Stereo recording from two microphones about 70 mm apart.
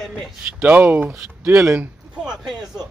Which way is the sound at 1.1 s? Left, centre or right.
Right.